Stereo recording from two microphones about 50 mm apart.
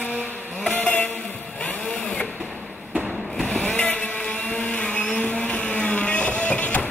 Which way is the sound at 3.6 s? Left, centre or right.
Left.